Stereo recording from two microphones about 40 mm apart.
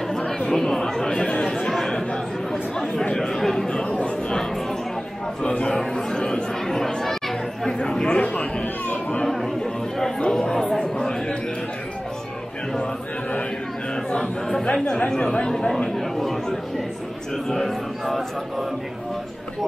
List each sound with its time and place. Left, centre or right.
0.3 s chatter: centre
3.8 s chatter: left
5.4 s a sound: left
5.8 s chatter: centre
8.1 s a sound: left
9.2 s chatter: centre
11.0 s a sound: centre
14.6 s speech: left
17.5 s speech: centre
18.0 s speech: centre